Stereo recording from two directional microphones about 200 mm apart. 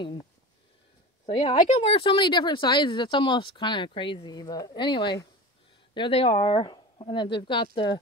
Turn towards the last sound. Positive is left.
turn(degrees=25)  # may be behind; listen again after turning